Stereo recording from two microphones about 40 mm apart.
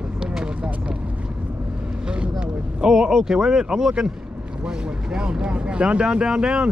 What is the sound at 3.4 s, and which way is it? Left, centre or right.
Speech, right.